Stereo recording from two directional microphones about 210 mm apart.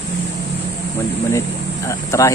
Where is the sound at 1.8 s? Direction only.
15° left (ahead or behind).